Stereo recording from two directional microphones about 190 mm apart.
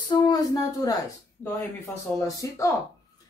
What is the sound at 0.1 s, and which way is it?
Speech, 20° left (ahead or behind).